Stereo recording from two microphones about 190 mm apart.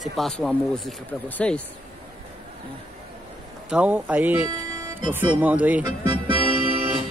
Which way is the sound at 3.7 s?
5° right (ahead or behind).